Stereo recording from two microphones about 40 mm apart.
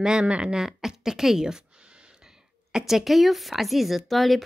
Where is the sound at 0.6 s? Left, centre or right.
Centre.